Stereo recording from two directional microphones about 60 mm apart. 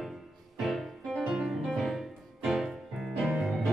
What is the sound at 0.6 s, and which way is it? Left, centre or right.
Music, centre.